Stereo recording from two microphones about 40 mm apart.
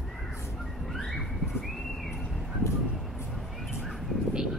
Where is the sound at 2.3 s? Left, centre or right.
Centre.